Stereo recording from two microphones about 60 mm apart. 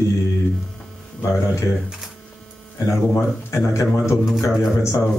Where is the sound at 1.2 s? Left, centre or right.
Left.